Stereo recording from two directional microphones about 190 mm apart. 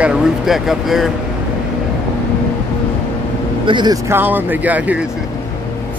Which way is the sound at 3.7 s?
25° right (ahead or behind).